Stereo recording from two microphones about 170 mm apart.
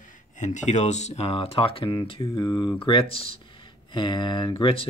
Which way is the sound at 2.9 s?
30° left (ahead or behind).